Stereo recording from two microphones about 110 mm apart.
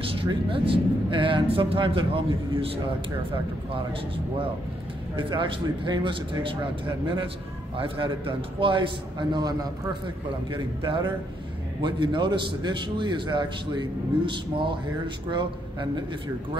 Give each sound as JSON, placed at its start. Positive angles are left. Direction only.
{"t": 0.0, "sound": "speech", "side_deg": -55}
{"t": 5.1, "sound": "a man's voice", "side_deg": -45}
{"t": 7.7, "sound": "a man's voice", "side_deg": -55}
{"t": 10.5, "sound": "a man's voice", "side_deg": -50}